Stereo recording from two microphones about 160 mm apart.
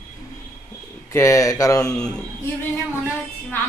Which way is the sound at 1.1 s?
20° left (ahead or behind).